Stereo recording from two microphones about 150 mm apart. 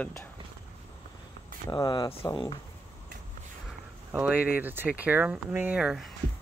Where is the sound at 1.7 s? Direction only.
30° left (ahead or behind).